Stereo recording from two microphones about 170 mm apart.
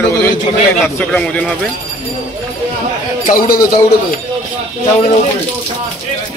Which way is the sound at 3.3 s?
55° left (ahead or behind).